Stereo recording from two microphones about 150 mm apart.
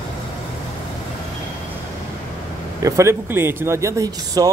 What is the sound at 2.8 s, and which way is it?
Speech, 20° right (ahead or behind).